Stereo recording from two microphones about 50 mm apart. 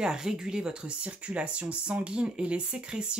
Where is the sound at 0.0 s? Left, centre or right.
Centre.